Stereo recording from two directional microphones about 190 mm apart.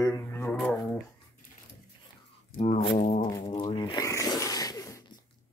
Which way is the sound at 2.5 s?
40° left (ahead or behind).